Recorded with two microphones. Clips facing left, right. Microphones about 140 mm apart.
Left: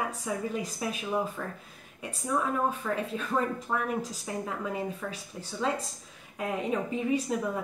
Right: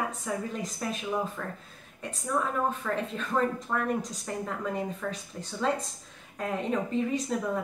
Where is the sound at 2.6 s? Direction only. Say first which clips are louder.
Even; 10° left (ahead or behind).